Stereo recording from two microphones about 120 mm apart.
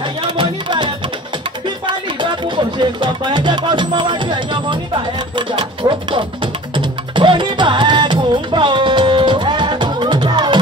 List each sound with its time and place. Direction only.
0.2 s music: 40° right (ahead or behind)
2.4 s music: 40° right (ahead or behind)